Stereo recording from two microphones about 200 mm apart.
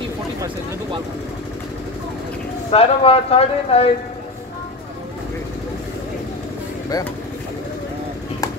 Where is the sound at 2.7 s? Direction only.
30° left (ahead or behind).